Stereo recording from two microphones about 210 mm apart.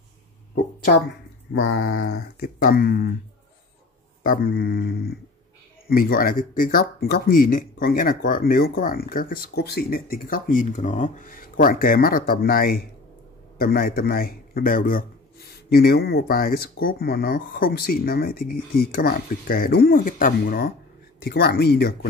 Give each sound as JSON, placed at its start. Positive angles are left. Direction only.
{"t": 1.5, "sound": "mantra", "side_deg": 65}
{"t": 2.0, "sound": "speech", "side_deg": 45}
{"t": 4.2, "sound": "a man's voice", "side_deg": 45}